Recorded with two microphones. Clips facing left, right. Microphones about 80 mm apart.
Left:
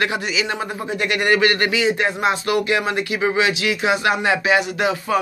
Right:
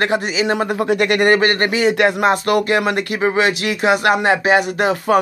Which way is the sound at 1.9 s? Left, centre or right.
Right.